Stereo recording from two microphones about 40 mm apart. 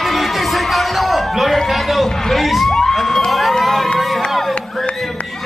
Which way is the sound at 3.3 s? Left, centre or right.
Centre.